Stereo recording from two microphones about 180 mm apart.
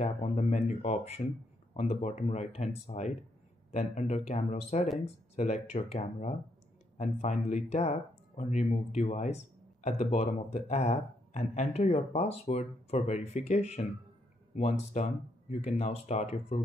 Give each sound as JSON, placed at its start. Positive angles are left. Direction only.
{"t": 0.0, "sound": "speech", "side_deg": 40}